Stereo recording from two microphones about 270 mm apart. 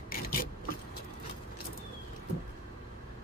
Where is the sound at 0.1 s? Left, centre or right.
Left.